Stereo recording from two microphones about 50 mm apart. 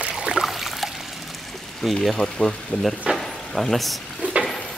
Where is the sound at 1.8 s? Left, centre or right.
Centre.